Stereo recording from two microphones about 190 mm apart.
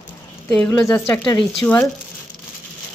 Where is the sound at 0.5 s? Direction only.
10° left (ahead or behind).